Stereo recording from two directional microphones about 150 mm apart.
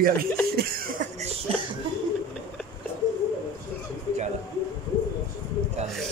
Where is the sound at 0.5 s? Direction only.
90° right.